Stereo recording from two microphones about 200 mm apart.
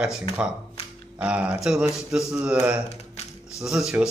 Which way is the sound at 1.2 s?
5° right (ahead or behind).